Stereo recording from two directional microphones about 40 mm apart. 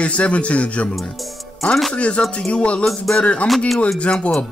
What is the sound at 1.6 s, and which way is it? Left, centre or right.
Speech, left.